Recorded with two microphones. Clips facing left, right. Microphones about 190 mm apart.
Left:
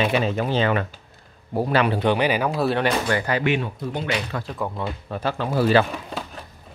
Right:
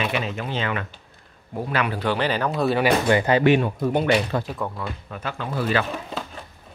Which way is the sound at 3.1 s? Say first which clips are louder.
Right 4 dB; 20° right (ahead or behind).